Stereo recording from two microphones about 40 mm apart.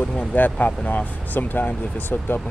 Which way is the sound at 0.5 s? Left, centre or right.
Left.